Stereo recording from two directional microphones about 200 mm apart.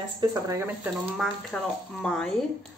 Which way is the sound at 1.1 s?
5° left (ahead or behind).